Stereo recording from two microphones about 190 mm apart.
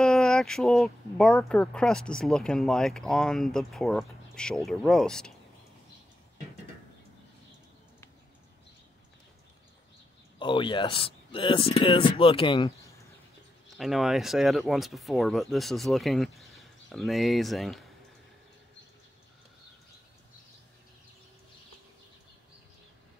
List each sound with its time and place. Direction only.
0.0 s speech: 5° left (ahead or behind)
10.4 s speech: 25° left (ahead or behind)
13.7 s speech: centre (ahead or behind)